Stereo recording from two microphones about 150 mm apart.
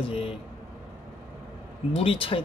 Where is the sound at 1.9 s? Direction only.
35° left (ahead or behind).